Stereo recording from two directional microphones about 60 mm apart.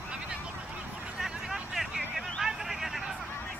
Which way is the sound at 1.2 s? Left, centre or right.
Centre.